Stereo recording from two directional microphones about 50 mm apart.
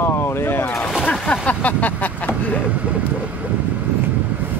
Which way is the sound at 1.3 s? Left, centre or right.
Left.